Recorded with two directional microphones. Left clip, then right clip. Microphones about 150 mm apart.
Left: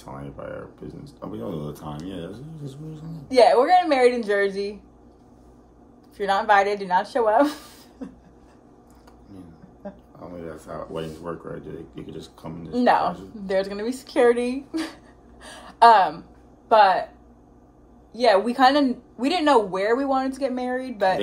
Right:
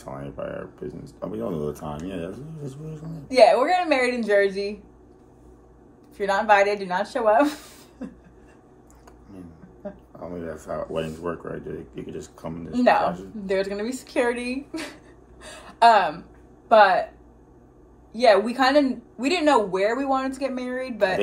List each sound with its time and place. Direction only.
0.0 s speech: 5° right (ahead or behind)
3.3 s a woman's voice: 15° left (ahead or behind)
6.1 s a woman's voice: 15° left (ahead or behind)
10.1 s speech: 5° right (ahead or behind)
10.9 s a woman's voice: 10° left (ahead or behind)
11.2 s speech: 5° right (ahead or behind)
12.7 s a woman's voice: 10° left (ahead or behind)
15.4 s a sound: 15° left (ahead or behind)
16.6 s speech: 10° left (ahead or behind)
18.1 s a woman's voice: 10° left (ahead or behind)